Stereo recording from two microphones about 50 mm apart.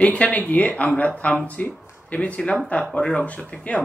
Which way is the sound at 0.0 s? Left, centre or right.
Left.